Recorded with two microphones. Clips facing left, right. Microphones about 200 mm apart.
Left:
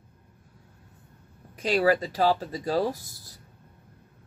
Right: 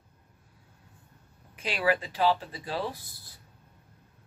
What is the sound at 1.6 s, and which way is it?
Speech, 40° left (ahead or behind).